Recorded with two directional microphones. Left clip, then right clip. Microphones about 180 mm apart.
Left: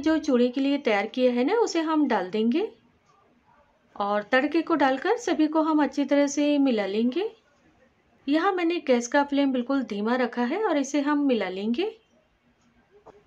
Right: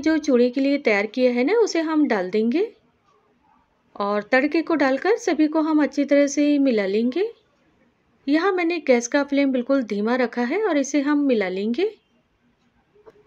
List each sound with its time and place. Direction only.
0.0 s speech: 15° right (ahead or behind)
3.9 s speech: 15° right (ahead or behind)
8.3 s speech: 20° right (ahead or behind)